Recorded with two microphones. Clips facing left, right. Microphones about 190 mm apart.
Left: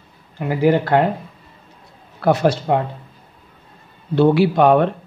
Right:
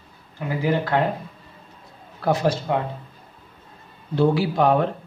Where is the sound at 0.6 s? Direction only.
65° left (ahead or behind).